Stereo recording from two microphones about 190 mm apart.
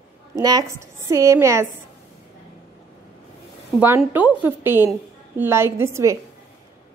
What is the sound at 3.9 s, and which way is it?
A woman's voice, 10° right (ahead or behind).